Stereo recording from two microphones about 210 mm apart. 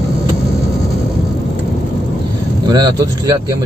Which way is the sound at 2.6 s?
20° right (ahead or behind).